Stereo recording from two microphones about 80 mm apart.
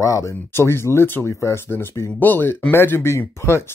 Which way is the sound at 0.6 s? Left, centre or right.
Left.